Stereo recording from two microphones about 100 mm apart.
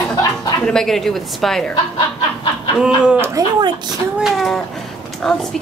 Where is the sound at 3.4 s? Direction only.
35° right (ahead or behind).